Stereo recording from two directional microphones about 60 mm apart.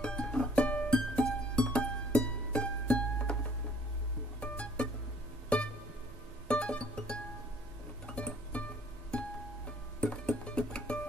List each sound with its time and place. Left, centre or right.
0.0 s music: centre
4.4 s music: left
6.4 s music: centre
9.9 s music: centre